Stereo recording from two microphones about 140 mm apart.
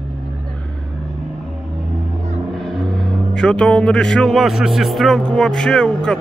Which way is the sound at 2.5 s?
Centre (ahead or behind).